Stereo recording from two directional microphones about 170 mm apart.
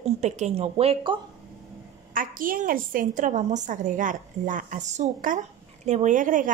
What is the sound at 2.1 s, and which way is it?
A woman's voice, 55° right (ahead or behind).